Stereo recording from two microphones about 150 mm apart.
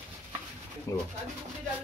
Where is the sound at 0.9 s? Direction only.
20° left (ahead or behind).